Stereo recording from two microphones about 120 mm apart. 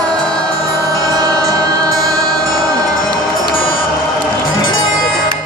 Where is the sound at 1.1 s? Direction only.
30° right (ahead or behind).